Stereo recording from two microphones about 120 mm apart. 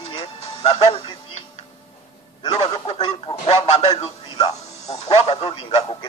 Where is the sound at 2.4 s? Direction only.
40° left (ahead or behind).